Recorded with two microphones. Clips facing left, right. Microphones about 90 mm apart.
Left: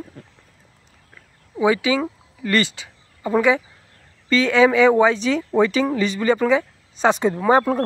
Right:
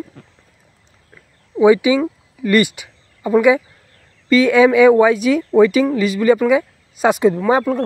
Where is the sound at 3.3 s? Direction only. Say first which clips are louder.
Right 5 dB; 10° right (ahead or behind).